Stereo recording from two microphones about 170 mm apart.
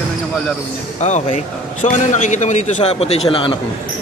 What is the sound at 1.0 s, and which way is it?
A man's voice, 45° left (ahead or behind).